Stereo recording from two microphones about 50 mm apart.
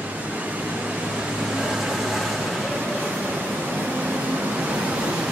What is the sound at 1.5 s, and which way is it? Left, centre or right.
Vehicle, centre.